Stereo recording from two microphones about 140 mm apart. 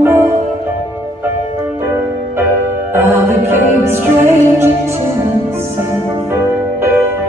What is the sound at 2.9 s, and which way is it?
Music, 20° right (ahead or behind).